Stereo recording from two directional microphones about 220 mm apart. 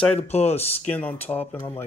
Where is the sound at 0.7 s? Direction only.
5° left (ahead or behind).